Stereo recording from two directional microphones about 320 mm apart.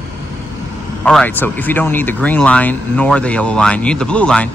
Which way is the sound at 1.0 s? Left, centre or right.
Centre.